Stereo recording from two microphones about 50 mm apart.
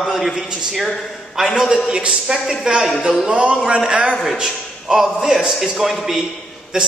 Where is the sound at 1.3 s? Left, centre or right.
Centre.